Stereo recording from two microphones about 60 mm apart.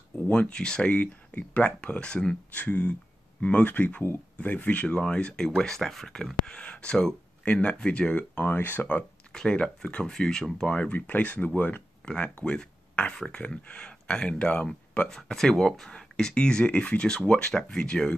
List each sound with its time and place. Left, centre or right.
0.3 s speech: centre
0.9 s speech: left
8.5 s speech: left
9.3 s speech: centre
10.9 s speech: left
12.0 s speech: centre